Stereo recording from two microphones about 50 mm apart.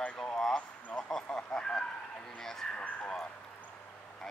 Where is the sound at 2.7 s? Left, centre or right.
Left.